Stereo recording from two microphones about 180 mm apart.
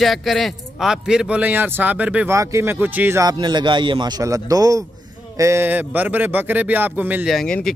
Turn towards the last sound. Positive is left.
turn(degrees=5)  # may be behind; listen again after turning